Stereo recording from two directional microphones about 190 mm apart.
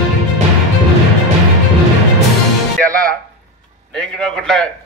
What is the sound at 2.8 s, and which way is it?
Music, 5° left (ahead or behind).